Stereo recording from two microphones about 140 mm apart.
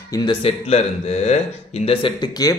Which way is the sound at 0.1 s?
35° left (ahead or behind).